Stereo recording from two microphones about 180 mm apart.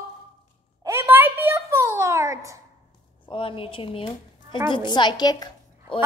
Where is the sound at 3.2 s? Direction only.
30° left (ahead or behind).